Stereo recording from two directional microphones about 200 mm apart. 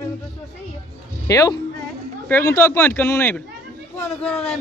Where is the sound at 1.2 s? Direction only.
15° left (ahead or behind).